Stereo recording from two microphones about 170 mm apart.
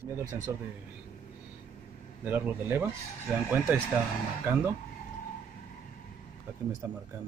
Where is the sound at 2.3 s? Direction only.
10° right (ahead or behind).